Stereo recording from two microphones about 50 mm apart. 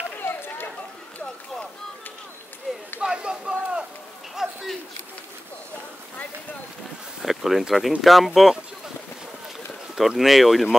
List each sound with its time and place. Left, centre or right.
0.2 s run: left
3.0 s a sound: centre
4.4 s a sound: centre
7.2 s speech: centre
8.4 s boat: centre
9.9 s speech: centre